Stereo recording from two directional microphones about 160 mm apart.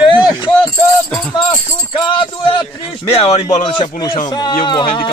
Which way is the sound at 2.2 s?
30° left (ahead or behind).